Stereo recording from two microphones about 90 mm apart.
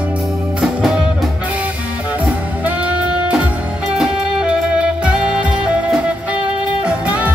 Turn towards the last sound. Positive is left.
turn(degrees=-15)  # may be behind; listen again after turning